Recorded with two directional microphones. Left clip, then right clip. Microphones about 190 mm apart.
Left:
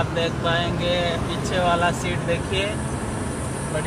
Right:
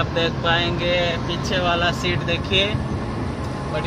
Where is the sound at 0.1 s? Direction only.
45° right (ahead or behind).